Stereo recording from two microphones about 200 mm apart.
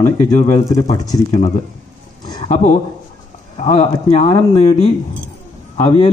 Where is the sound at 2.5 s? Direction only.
40° left (ahead or behind).